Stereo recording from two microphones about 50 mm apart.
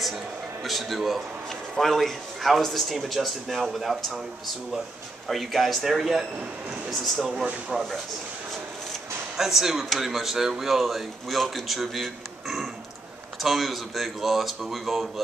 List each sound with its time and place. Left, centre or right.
0.7 s speech: centre
5.3 s speech: centre
9.4 s speech: centre